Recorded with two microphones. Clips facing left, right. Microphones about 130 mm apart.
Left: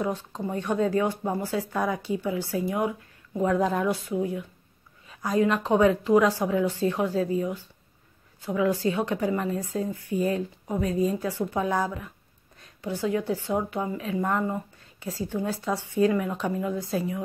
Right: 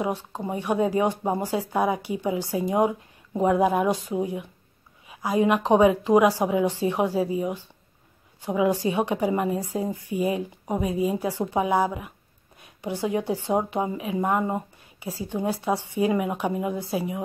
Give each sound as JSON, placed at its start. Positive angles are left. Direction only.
{"t": 0.0, "sound": "a woman's voice", "side_deg": -10}